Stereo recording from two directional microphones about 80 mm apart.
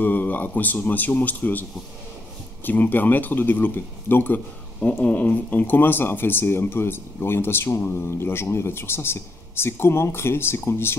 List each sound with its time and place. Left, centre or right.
0.0 s a man's voice: left